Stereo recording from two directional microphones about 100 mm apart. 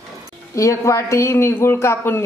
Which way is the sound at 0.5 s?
30° left (ahead or behind).